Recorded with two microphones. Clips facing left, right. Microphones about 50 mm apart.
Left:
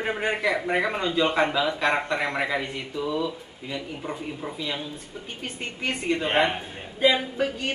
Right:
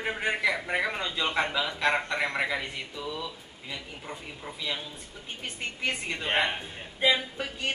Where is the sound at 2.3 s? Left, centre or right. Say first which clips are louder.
Left 3 dB; centre.